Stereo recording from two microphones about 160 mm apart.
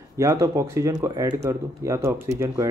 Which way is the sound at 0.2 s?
20° right (ahead or behind).